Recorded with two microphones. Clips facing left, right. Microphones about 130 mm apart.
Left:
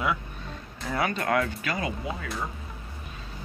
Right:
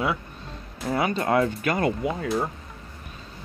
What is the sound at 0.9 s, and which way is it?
Speech, 25° right (ahead or behind).